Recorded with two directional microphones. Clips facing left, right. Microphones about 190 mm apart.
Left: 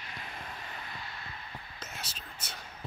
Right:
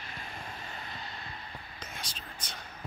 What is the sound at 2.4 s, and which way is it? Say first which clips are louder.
Speech: even; 10° left (ahead or behind).